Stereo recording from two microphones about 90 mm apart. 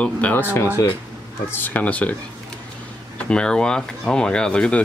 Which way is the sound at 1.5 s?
20° left (ahead or behind).